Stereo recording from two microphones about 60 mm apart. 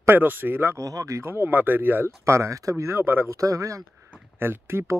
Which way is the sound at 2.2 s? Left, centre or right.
Right.